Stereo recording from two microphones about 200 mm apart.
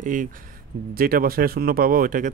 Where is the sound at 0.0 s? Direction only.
40° right (ahead or behind).